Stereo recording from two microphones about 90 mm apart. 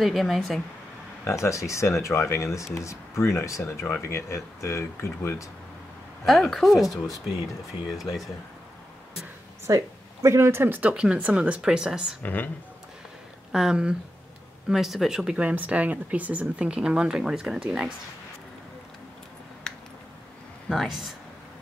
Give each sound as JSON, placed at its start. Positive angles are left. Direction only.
{"t": 0.0, "sound": "speech", "side_deg": 0}
{"t": 1.2, "sound": "speech", "side_deg": 30}
{"t": 6.2, "sound": "speech", "side_deg": 0}
{"t": 9.7, "sound": "speech", "side_deg": -35}
{"t": 12.2, "sound": "speech", "side_deg": 20}
{"t": 13.5, "sound": "speech", "side_deg": -5}
{"t": 19.7, "sound": "a sound", "side_deg": 5}
{"t": 20.6, "sound": "speech", "side_deg": 0}